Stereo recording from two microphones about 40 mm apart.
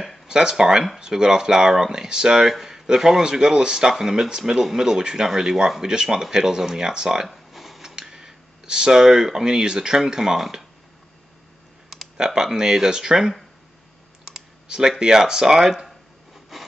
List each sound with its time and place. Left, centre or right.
0.3 s speech: centre
7.2 s a sound: centre
7.9 s speech: centre
12.4 s speech: centre
16.5 s wood: centre